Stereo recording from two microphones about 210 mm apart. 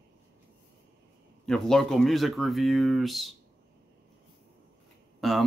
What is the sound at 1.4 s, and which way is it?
Speech, centre (ahead or behind).